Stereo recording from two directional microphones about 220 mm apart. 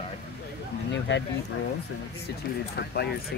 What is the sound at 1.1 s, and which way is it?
Speech, 55° left (ahead or behind).